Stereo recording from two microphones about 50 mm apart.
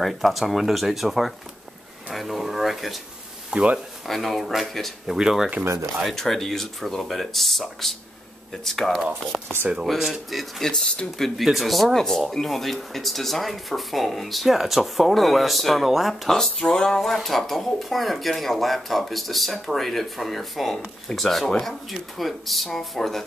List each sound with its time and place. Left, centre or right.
0.0 s speech: centre
3.4 s speech: right
4.0 s speech: centre
6.1 s speech: centre
9.3 s speech: right
9.8 s speech: centre
10.7 s a sound: centre
11.1 s speech: centre
16.5 s a sound: centre
17.1 s speech: centre